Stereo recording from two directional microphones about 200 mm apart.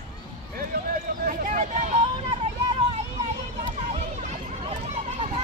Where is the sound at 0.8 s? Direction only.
45° right (ahead or behind).